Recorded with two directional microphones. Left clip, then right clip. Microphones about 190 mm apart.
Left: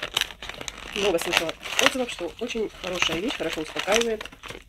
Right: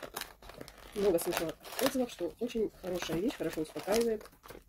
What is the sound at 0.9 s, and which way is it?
Speech, 30° left (ahead or behind).